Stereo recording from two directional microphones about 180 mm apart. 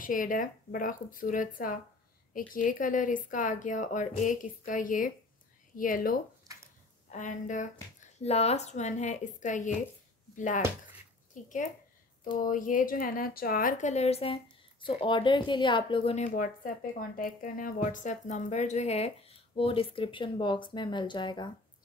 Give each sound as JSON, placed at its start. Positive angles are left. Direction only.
{"t": 0.0, "sound": "a woman's voice", "side_deg": 50}
{"t": 17.2, "sound": "a woman's voice", "side_deg": 50}